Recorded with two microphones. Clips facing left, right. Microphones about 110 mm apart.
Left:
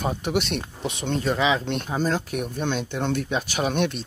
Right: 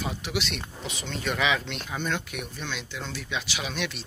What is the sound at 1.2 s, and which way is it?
Speech, 30° left (ahead or behind).